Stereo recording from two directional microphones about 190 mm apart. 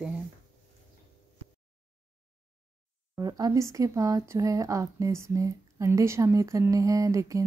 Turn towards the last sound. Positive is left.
turn(degrees=-15)  # may be behind; listen again after turning